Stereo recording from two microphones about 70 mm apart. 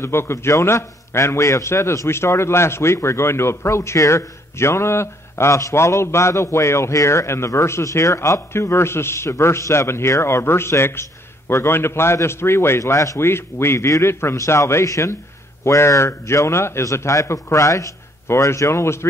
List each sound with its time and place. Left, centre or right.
0.0 s a man's voice: left
13.2 s a man's voice: left